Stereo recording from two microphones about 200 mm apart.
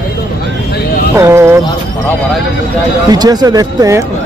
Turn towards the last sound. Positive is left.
turn(degrees=-15)  # may be behind; listen again after turning